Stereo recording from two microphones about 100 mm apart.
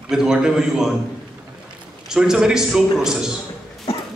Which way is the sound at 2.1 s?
5° right (ahead or behind).